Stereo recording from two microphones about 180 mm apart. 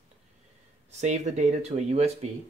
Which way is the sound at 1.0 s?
40° right (ahead or behind).